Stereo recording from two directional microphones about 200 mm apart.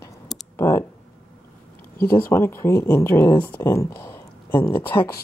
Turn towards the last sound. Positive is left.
turn(degrees=10)  # may be behind; listen again after turning